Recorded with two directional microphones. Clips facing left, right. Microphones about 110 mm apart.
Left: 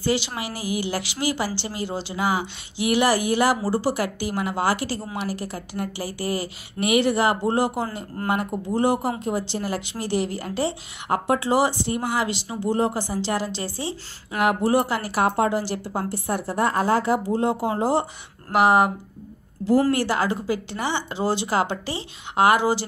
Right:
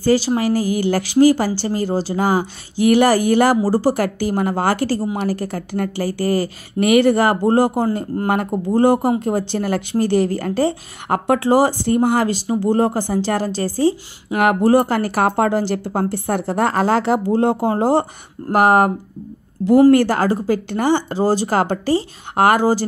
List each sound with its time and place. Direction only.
0.0 s a woman's voice: 40° right (ahead or behind)
19.9 s speech: 50° right (ahead or behind)